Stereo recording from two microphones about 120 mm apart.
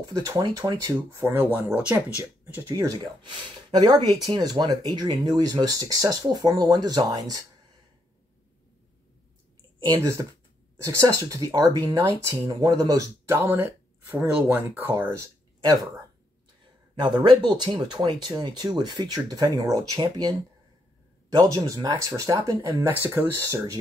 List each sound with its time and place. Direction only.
0.1 s speech: 35° right (ahead or behind)
0.9 s speech: 20° right (ahead or behind)
2.6 s speech: 30° right (ahead or behind)
3.2 s speech: 40° right (ahead or behind)
9.9 s speech: 25° right (ahead or behind)
17.0 s speech: 40° right (ahead or behind)
21.4 s speech: 35° right (ahead or behind)